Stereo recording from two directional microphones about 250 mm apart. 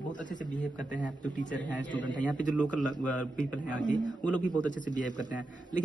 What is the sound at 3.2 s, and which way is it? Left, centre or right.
Speech, centre.